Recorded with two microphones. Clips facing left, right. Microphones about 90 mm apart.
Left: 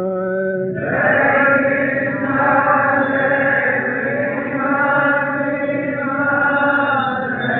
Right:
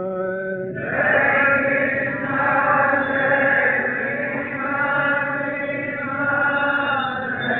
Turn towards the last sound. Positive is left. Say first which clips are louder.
# left 5 dB
turn(degrees=30)  # may be behind; listen again after turning